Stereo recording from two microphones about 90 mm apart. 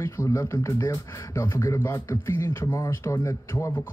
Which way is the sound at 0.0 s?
35° left (ahead or behind).